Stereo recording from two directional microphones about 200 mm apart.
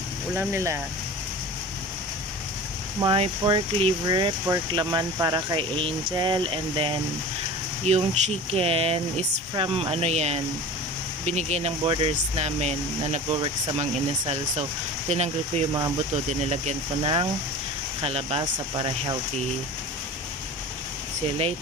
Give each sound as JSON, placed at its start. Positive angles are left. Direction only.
{"t": 0.3, "sound": "speech", "side_deg": -10}
{"t": 3.0, "sound": "speech", "side_deg": -25}